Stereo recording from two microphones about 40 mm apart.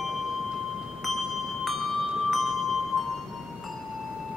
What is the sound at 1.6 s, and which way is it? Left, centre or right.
Music, centre.